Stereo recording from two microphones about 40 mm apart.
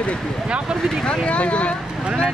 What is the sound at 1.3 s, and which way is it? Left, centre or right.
Speech, left.